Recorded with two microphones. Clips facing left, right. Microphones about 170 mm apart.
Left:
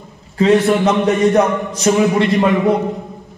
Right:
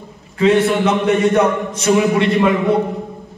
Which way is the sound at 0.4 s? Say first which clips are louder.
Left 1 dB; 35° left (ahead or behind).